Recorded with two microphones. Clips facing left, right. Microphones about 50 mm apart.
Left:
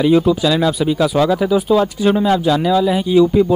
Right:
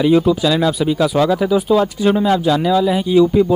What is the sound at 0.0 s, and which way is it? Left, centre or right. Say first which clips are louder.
Speech: even; centre.